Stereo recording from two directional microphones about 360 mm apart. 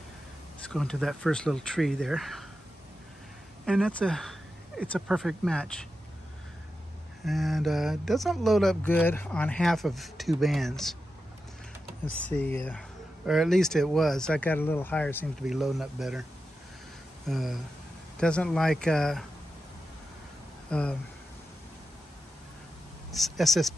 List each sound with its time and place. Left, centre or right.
0.7 s speech: centre
3.6 s speech: centre
7.2 s speech: centre
12.1 s speech: centre
17.3 s speech: centre
20.7 s speech: centre
23.1 s speech: centre